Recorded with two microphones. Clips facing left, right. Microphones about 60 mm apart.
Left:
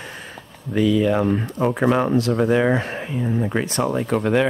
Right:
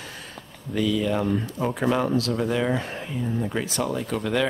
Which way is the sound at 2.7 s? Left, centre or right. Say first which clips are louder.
Left 5 dB; left.